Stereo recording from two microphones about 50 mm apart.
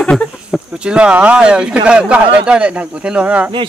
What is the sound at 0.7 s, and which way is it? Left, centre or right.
Speech, centre.